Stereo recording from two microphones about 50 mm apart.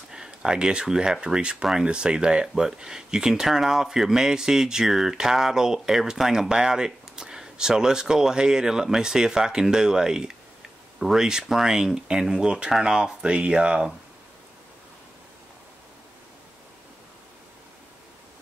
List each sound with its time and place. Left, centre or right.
0.1 s speech: centre